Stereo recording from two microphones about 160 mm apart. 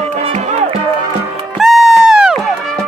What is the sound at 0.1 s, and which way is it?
Music, 40° right (ahead or behind).